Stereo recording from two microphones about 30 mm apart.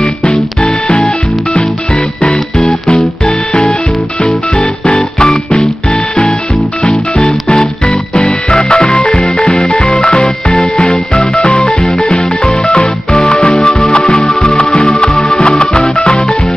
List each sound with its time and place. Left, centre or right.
0.2 s music: left
2.9 s music: left
6.8 s music: left